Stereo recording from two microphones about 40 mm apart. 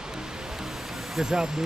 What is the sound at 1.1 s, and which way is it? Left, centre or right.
Speech, centre.